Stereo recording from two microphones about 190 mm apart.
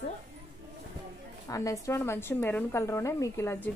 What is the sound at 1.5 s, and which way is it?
A woman's voice, 15° left (ahead or behind).